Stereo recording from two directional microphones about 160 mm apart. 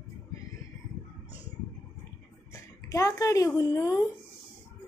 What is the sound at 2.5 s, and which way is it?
Speech, 20° left (ahead or behind).